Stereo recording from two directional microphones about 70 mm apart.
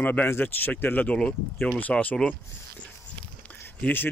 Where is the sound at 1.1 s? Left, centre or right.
Centre.